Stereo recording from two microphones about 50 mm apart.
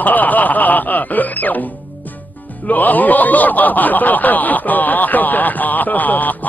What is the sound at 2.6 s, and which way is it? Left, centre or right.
A man's voice, left.